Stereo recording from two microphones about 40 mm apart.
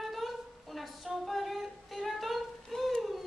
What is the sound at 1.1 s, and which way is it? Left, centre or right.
Singing, centre.